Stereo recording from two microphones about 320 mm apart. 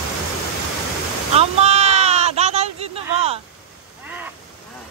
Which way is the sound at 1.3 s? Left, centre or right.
Centre.